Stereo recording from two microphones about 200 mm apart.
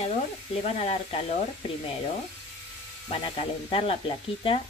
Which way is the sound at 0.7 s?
30° left (ahead or behind).